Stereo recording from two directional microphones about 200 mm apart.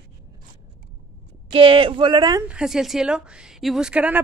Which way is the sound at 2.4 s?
5° right (ahead or behind).